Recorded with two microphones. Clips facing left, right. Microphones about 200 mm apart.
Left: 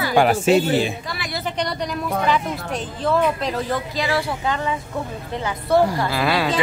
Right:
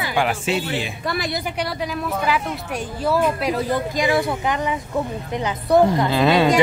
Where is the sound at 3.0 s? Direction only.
10° right (ahead or behind).